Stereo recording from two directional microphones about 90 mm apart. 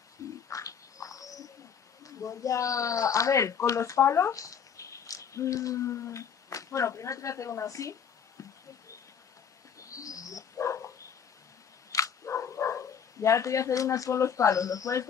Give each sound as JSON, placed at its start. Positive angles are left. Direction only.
{"t": 0.5, "sound": "bird", "side_deg": 40}
{"t": 2.0, "sound": "speech", "side_deg": 40}
{"t": 9.8, "sound": "bird", "side_deg": 40}
{"t": 11.9, "sound": "dog", "side_deg": 35}